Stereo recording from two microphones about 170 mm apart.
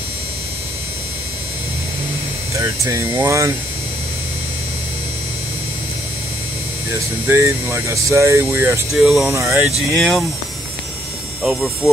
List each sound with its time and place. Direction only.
2.5 s speech: 20° right (ahead or behind)
6.9 s speech: 15° right (ahead or behind)
8.9 s speech: 5° right (ahead or behind)
9.3 s speech: 15° right (ahead or behind)
9.8 s speech: centre (ahead or behind)
11.4 s speech: centre (ahead or behind)